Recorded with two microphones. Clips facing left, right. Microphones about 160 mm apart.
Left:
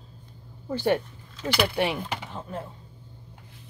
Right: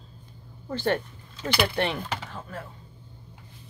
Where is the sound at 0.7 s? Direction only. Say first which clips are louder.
Left 2 dB; 15° left (ahead or behind).